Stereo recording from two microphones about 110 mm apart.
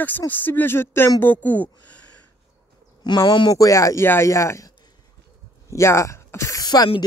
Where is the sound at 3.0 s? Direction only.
45° left (ahead or behind); by 4.7 s 25° left (ahead or behind).